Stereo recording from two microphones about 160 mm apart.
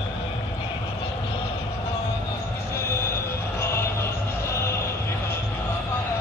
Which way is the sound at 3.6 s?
15° left (ahead or behind).